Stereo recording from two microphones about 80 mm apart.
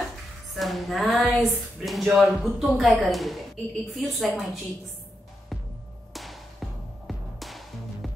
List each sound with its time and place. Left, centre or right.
0.6 s a woman's voice: centre
5.5 s music: centre